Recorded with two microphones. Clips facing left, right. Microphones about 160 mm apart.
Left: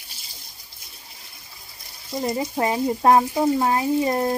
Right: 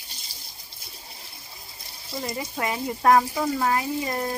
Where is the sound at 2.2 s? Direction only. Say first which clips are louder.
Left 6 dB; 30° left (ahead or behind).